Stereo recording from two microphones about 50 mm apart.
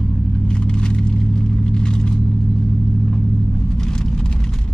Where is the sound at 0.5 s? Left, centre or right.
Centre.